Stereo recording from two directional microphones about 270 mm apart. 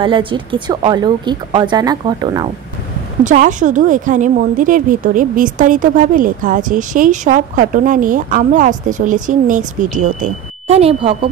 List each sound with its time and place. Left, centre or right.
0.0 s speech: centre
3.3 s speech: right